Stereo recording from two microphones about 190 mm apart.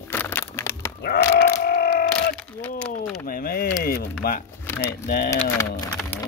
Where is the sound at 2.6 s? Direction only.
5° left (ahead or behind).